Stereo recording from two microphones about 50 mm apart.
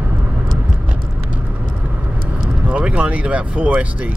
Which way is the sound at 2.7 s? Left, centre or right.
Right.